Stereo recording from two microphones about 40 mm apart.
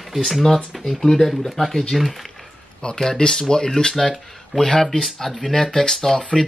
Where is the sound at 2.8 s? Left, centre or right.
Centre.